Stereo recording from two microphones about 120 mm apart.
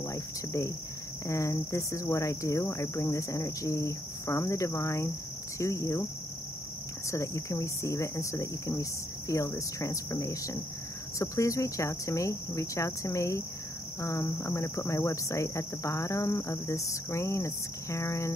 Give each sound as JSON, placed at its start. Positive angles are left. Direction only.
{"t": 0.0, "sound": "cricket", "side_deg": 25}
{"t": 7.1, "sound": "cricket", "side_deg": 25}